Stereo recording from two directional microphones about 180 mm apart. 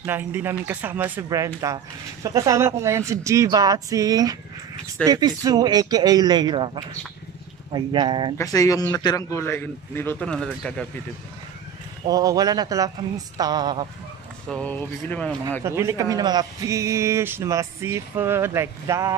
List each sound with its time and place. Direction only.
0.0 s a man's voice: 10° right (ahead or behind); by 8.4 s 25° right (ahead or behind)
8.4 s a man's voice: 20° left (ahead or behind)
12.1 s speech: 20° right (ahead or behind)
14.5 s a man's voice: 10° left (ahead or behind)
15.6 s a man's voice: 15° right (ahead or behind)